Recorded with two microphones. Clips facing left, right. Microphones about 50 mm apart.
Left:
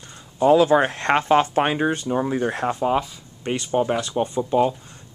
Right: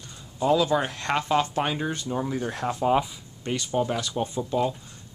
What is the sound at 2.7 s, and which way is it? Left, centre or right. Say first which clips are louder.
Speech: right 2 dB; centre.